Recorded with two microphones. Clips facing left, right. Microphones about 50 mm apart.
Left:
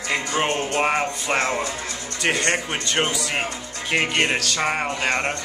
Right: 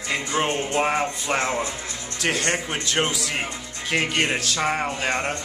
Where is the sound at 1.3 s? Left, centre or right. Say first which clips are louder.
Left 2 dB; centre.